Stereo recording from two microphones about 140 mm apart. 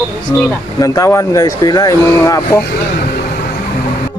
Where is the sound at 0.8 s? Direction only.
25° left (ahead or behind).